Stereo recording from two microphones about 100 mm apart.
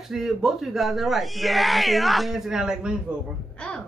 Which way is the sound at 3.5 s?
10° left (ahead or behind).